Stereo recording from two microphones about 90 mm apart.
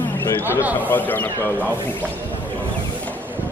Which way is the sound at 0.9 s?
20° left (ahead or behind).